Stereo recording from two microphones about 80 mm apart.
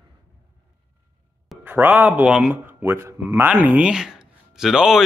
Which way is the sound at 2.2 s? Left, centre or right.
Centre.